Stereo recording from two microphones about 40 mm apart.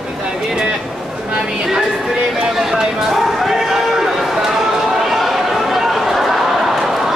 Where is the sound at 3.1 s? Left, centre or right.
Centre.